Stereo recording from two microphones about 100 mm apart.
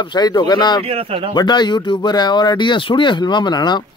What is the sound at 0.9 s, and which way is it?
Speech, 75° right (ahead or behind).